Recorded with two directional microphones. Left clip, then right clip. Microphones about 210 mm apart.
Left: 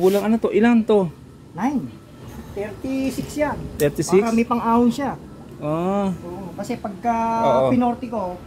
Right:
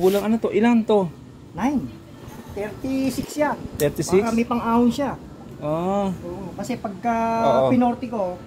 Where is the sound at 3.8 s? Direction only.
20° left (ahead or behind).